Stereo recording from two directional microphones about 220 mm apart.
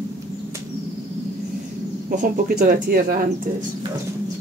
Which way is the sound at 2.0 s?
40° right (ahead or behind).